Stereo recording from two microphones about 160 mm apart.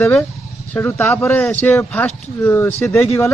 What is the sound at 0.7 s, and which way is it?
Speech, 15° left (ahead or behind).